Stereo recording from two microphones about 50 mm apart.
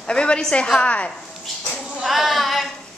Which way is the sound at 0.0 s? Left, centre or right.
Centre.